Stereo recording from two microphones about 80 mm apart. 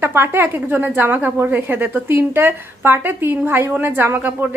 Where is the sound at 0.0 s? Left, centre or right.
Right.